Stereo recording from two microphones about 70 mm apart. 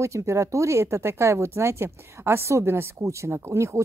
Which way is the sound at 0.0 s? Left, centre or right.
Right.